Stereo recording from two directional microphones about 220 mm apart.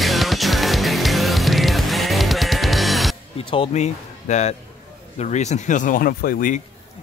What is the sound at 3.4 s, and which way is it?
Speech, 25° left (ahead or behind).